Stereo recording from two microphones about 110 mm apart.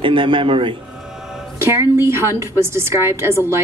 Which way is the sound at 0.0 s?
50° right (ahead or behind).